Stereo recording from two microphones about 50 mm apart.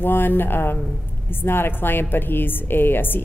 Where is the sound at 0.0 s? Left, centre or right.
Left.